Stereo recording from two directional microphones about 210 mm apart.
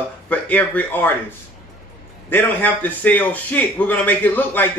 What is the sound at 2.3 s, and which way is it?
A man's voice, 10° left (ahead or behind).